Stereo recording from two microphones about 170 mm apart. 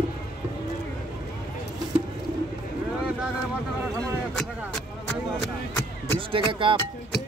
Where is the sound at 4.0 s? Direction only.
5° left (ahead or behind).